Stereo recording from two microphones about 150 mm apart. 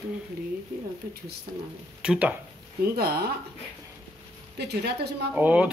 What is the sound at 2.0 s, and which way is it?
Speech, 10° right (ahead or behind).